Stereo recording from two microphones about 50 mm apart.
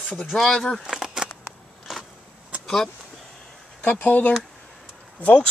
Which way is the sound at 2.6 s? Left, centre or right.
Centre.